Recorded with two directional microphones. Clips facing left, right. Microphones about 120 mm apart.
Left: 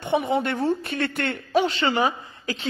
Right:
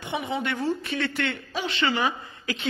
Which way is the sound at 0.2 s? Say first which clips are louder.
Left 5 dB; 45° left (ahead or behind).